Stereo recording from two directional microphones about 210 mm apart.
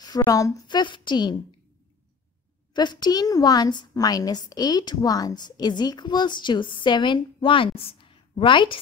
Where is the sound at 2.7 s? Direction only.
20° left (ahead or behind).